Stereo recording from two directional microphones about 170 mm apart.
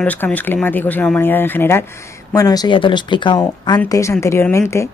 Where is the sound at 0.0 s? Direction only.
10° left (ahead or behind); by 3.3 s 25° left (ahead or behind).